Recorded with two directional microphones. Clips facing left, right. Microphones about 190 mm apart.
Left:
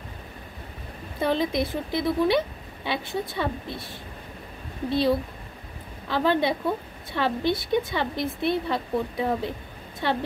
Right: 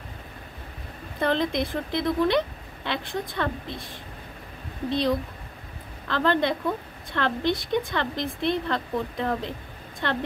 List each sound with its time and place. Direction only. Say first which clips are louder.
1.2 s a woman's voice: even; 5° left (ahead or behind)